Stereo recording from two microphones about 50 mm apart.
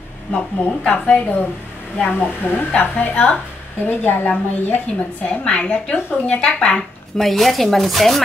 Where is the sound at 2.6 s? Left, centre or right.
Left.